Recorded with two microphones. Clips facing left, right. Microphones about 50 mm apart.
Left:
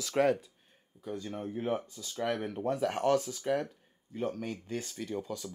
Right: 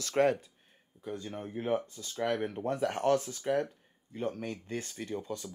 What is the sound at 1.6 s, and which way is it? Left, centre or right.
Speech, right.